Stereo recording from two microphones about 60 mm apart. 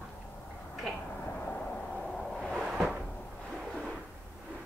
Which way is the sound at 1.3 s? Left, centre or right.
Left.